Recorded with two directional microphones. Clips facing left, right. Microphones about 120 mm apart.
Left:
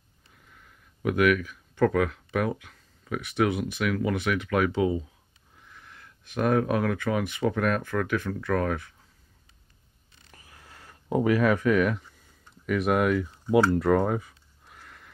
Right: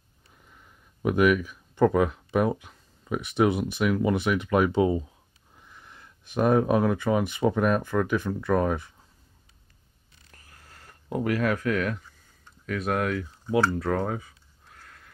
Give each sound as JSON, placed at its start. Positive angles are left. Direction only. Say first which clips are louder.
{"t": 1.0, "sound": "speech", "louder": "right 1 dB", "side_deg": -30}
{"t": 3.3, "sound": "speech", "louder": "right 2 dB", "side_deg": -30}
{"t": 4.7, "sound": "speech", "louder": "right 2 dB", "side_deg": -40}
{"t": 5.7, "sound": "a sound", "louder": "even", "side_deg": -20}
{"t": 7.0, "sound": "speech", "louder": "right 3 dB", "side_deg": -25}
{"t": 10.3, "sound": "a sound", "louder": "left 2 dB", "side_deg": 10}
{"t": 11.6, "sound": "speech", "louder": "left 4 dB", "side_deg": 5}